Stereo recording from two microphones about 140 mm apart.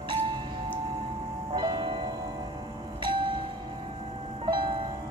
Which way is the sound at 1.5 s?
30° right (ahead or behind).